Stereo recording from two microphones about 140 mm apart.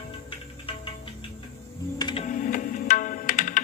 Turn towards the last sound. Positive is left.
turn(degrees=65)  # may be behind; listen again after turning